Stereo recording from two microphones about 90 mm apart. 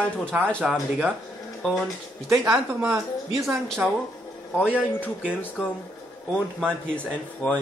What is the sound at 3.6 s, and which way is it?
Speech, 5° left (ahead or behind).